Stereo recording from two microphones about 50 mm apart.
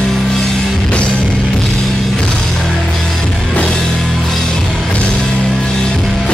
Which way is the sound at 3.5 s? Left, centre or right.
Centre.